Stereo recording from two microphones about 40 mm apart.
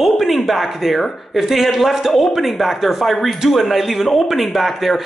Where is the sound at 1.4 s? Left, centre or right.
Centre.